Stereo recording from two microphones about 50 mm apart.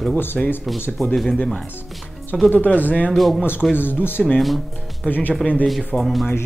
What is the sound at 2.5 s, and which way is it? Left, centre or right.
Speech, left.